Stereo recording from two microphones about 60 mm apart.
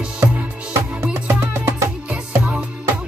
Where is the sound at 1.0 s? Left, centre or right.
Right.